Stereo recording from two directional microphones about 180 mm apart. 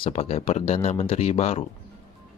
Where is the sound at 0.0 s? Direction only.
35° left (ahead or behind).